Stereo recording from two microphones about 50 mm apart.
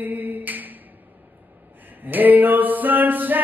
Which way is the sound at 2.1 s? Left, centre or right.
Right.